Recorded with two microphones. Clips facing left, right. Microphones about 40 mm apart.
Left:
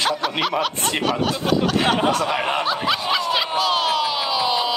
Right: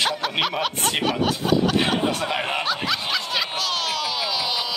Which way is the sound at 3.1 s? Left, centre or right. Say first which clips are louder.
Left 5 dB; centre.